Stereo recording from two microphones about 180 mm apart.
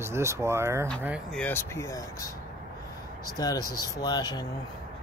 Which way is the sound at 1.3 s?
10° left (ahead or behind).